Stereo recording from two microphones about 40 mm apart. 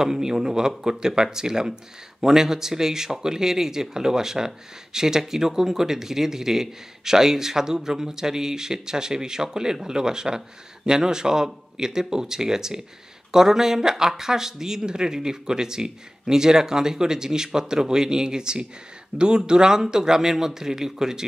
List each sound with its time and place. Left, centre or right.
0.0 s speech: centre